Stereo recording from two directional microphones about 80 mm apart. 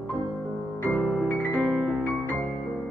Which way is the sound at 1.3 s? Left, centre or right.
Left.